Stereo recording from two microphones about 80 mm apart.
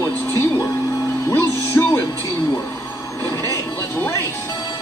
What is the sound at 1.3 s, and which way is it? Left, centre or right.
Music, left.